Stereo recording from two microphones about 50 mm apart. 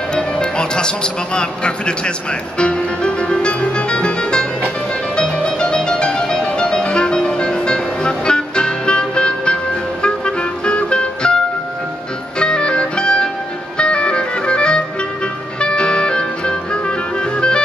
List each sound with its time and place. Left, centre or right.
0.1 s speech: centre
2.6 s music: left